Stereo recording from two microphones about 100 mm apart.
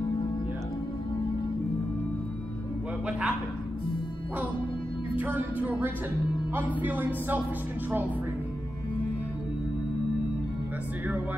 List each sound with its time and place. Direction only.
3.1 s speech: 10° right (ahead or behind)
5.1 s speech: 20° right (ahead or behind)